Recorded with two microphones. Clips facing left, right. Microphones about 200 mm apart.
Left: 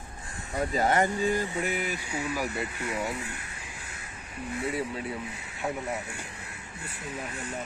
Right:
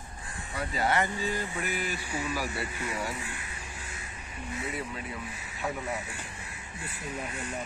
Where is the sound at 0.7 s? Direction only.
45° left (ahead or behind).